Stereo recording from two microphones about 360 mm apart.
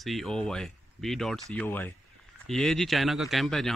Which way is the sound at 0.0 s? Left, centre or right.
Centre.